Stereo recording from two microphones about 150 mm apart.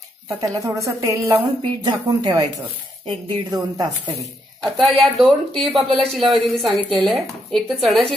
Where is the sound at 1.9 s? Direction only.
25° right (ahead or behind).